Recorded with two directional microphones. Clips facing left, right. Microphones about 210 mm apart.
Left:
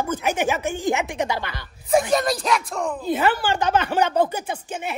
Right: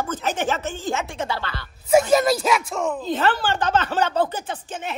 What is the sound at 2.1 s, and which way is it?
Speech, 5° right (ahead or behind).